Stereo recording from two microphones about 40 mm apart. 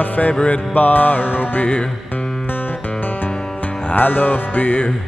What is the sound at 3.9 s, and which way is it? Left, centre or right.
Music, left.